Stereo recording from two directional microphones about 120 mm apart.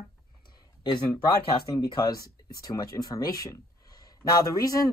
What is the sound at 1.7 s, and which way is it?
Speech, 30° left (ahead or behind).